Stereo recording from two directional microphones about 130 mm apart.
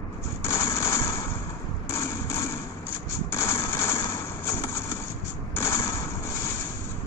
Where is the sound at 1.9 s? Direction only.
20° left (ahead or behind).